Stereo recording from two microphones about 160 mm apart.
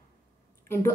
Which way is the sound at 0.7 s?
15° left (ahead or behind).